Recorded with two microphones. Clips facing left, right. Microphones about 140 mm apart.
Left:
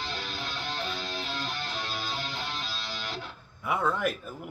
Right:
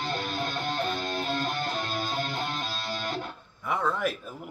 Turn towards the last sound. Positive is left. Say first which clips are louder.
# even
turn(degrees=0)  # may be behind; listen again after turning